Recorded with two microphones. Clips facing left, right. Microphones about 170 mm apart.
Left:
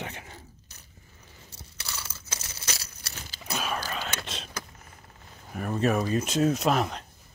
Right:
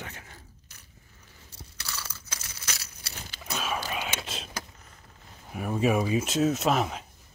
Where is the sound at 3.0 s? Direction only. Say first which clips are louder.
Even; 45° left (ahead or behind).